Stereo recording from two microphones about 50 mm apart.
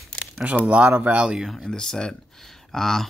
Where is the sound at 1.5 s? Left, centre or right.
Centre.